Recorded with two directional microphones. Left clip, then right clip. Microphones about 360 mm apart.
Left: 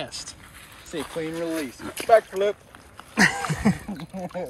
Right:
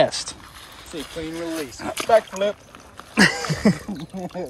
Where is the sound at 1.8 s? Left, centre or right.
Centre.